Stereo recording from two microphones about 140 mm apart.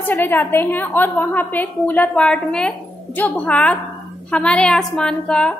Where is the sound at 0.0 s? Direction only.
15° left (ahead or behind).